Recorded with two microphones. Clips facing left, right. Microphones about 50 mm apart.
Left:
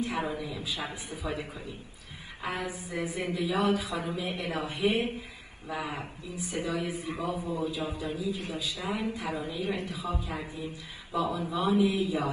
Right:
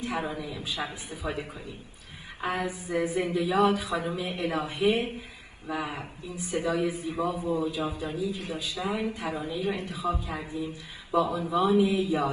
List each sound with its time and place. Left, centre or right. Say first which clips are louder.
0.4 s a man's voice: right 2 dB; right